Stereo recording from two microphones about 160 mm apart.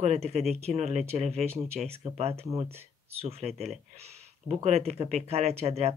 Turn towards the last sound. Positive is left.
turn(degrees=-40)  # may be behind; listen again after turning